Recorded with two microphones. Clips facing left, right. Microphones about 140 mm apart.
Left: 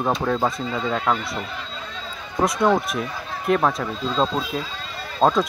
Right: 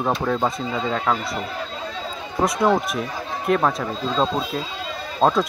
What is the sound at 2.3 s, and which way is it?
Speech, centre (ahead or behind).